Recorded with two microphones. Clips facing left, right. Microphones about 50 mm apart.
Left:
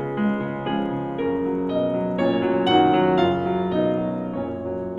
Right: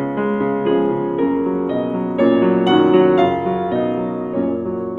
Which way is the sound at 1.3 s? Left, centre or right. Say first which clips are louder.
Right 5 dB; right.